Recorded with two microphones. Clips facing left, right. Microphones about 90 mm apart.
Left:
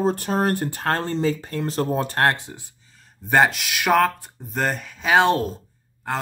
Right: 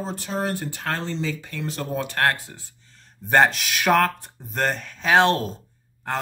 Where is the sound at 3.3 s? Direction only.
5° left (ahead or behind).